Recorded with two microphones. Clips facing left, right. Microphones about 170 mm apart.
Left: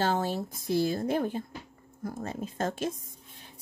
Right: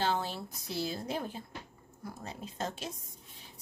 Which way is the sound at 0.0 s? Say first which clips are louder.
Left 5 dB; 45° left (ahead or behind).